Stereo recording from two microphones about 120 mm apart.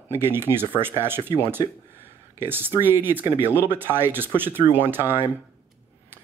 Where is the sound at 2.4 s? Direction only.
15° right (ahead or behind).